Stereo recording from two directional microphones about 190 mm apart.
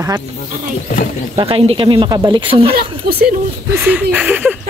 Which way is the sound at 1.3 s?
30° right (ahead or behind).